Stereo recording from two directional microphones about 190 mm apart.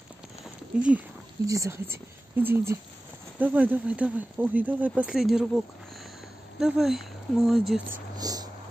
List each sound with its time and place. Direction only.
0.7 s speech: 5° right (ahead or behind)
6.6 s speech: centre (ahead or behind)
8.2 s a sound: 20° right (ahead or behind)